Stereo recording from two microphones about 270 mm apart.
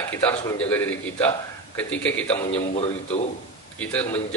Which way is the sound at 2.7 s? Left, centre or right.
Left.